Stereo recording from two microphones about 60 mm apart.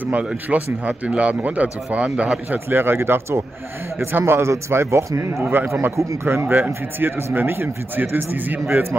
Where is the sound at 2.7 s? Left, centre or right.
Right.